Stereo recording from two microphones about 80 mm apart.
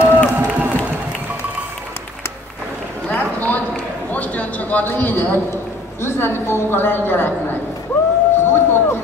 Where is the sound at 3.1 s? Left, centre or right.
Left.